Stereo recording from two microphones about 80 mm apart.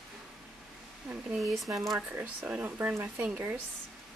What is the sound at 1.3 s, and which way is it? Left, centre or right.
Speech, centre.